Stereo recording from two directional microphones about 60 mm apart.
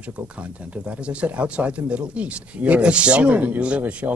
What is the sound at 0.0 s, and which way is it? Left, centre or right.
Speech, right.